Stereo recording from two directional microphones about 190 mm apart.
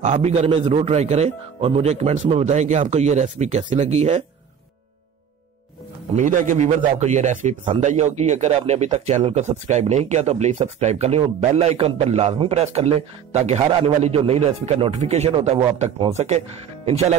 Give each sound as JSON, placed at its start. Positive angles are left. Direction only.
{"t": 0.0, "sound": "speech", "side_deg": -35}
{"t": 6.1, "sound": "speech", "side_deg": -40}